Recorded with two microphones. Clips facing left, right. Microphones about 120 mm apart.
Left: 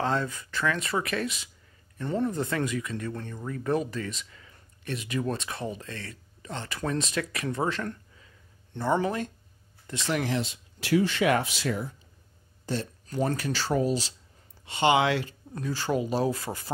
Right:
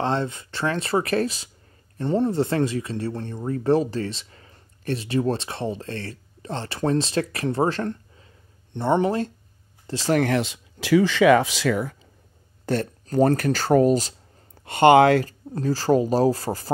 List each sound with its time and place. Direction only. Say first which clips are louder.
0.0 s speech: right 4 dB; 25° right (ahead or behind)
8.7 s speech: right 5 dB; 20° right (ahead or behind)
10.2 s speech: right 7 dB; 70° right (ahead or behind); by 12.0 s 90° right
13.0 s a sound: right 11 dB; 50° right (ahead or behind)
13.4 s speech: right 9 dB; 50° right (ahead or behind)